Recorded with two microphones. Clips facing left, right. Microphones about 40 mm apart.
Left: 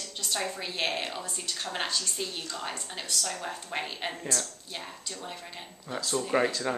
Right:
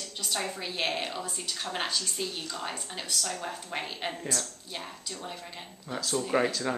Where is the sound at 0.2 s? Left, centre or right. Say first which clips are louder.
Left 1 dB; centre.